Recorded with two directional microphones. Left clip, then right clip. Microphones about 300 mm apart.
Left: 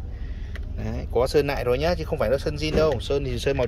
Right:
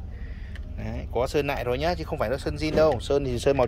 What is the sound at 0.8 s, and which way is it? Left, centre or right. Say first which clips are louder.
Speech: left 4 dB; centre.